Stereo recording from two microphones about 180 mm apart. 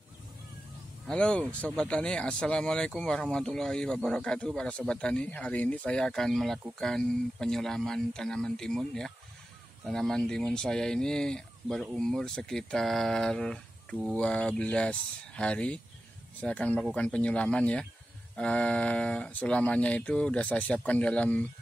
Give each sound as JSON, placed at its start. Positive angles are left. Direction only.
{"t": 1.0, "sound": "speech", "side_deg": 5}